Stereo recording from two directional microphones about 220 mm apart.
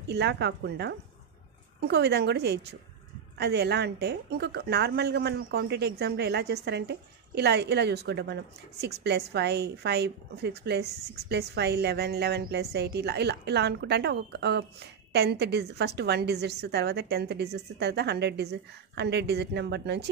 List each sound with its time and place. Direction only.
0.1 s a woman's voice: 50° right (ahead or behind)